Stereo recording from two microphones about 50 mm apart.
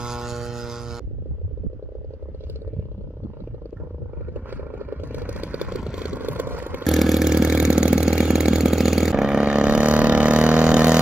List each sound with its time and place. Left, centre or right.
0.0 s music: centre
4.3 s vehicle: right
5.7 s a sound: centre
6.1 s vehicle: right
6.8 s vehicle: centre
7.2 s vehicle: centre